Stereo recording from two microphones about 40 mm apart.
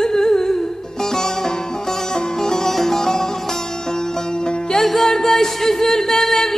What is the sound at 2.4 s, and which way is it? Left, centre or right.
Music, centre.